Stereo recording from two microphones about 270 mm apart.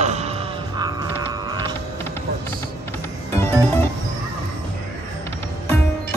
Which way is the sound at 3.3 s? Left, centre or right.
Centre.